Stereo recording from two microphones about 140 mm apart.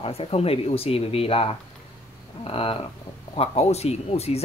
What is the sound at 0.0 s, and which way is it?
Speech, 45° left (ahead or behind).